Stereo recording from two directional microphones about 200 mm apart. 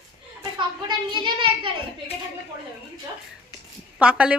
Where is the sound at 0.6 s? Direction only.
25° right (ahead or behind).